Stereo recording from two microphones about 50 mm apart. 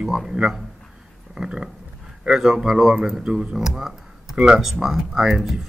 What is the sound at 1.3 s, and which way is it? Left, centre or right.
A man's voice, centre.